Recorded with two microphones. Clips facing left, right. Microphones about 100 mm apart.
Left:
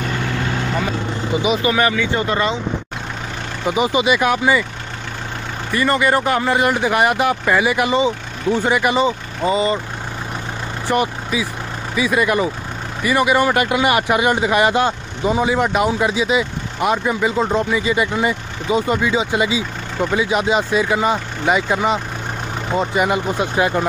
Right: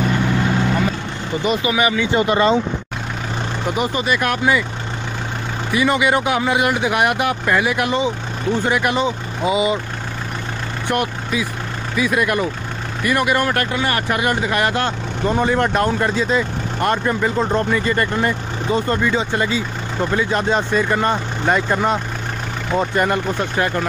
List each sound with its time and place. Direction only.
0.7 s vehicle: 5° left (ahead or behind)
1.6 s speech: 15° right (ahead or behind)
3.6 s speech: centre (ahead or behind)
5.7 s speech: 5° right (ahead or behind)
10.9 s speech: centre (ahead or behind)